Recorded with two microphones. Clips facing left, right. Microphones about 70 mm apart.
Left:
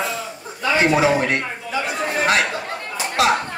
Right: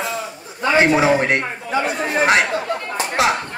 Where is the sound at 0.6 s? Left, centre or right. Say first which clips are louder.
Right 2 dB; right.